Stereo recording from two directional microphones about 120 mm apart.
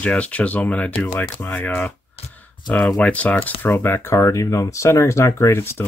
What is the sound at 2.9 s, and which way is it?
Speech, 10° left (ahead or behind).